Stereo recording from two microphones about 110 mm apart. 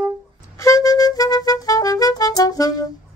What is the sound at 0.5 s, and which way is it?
Music, 30° left (ahead or behind).